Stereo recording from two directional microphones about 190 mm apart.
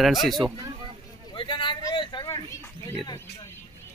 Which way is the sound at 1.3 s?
25° left (ahead or behind).